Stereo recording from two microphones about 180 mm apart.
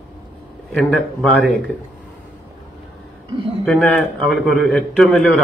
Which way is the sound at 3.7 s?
5° left (ahead or behind).